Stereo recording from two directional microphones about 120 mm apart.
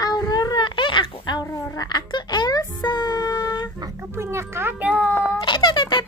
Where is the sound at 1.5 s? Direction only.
35° left (ahead or behind).